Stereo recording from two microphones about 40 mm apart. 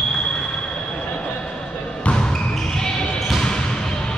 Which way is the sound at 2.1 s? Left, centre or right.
Centre.